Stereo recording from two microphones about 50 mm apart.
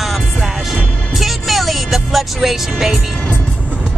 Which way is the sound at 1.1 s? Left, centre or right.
Centre.